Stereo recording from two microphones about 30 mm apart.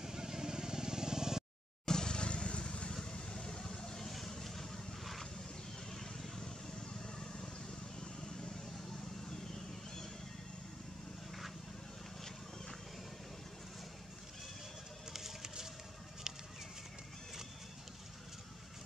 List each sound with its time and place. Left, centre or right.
0.0 s vehicle: centre
1.9 s vehicle: left
2.9 s vehicle: left
8.2 s vehicle: left
15.1 s fire: centre
16.3 s a sound: right